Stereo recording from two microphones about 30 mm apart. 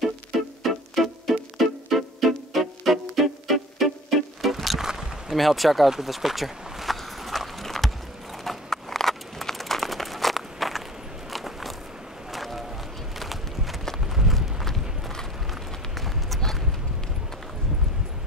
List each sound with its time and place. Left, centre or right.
0.3 s music: centre
4.7 s rowboat: centre
5.3 s speech: centre
5.9 s walk: centre
8.5 s horse: centre
11.3 s biting: centre
12.3 s a sound: centre
13.2 s walk: centre
14.1 s run: centre